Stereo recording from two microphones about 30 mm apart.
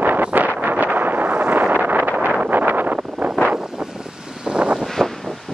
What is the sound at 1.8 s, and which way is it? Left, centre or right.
Wind noise, right.